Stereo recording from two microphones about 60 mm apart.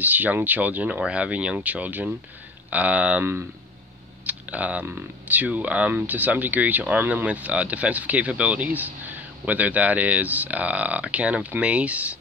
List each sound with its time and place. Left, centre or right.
0.0 s speech: right
4.3 s speech: right